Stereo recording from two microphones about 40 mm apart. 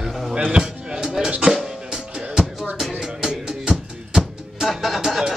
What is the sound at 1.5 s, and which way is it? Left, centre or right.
Drum, centre.